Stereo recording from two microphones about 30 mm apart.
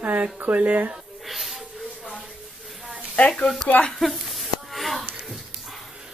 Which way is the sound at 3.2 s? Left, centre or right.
Left.